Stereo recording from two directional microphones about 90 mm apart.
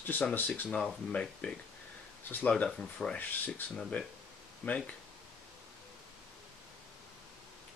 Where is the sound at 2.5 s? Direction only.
10° left (ahead or behind).